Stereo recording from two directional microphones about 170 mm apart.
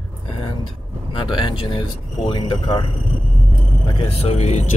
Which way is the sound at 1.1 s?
30° left (ahead or behind).